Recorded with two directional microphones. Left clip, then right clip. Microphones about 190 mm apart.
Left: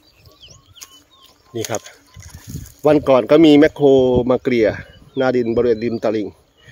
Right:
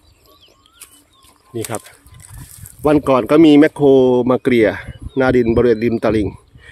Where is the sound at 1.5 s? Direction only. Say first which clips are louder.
Left 1 dB; 5° right (ahead or behind).